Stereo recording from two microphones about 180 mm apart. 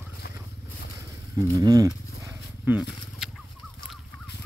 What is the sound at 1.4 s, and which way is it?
Speech, 20° right (ahead or behind).